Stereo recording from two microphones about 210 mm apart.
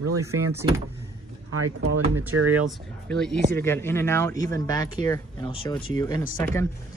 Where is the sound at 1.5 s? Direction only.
90° right.